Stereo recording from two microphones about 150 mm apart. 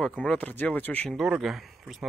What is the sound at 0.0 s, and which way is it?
Speech, 5° left (ahead or behind).